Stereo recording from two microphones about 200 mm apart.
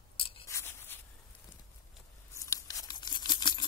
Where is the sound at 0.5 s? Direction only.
15° left (ahead or behind).